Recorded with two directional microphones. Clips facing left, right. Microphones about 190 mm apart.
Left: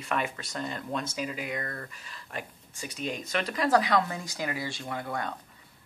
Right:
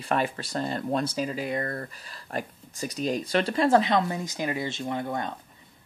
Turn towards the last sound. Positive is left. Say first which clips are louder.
# right 4 dB
turn(degrees=-25)  # may be behind; listen again after turning